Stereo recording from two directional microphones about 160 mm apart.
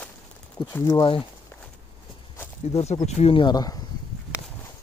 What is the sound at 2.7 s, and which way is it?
Speech, 40° left (ahead or behind).